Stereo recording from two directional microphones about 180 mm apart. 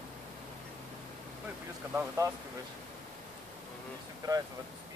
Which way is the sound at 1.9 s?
15° right (ahead or behind).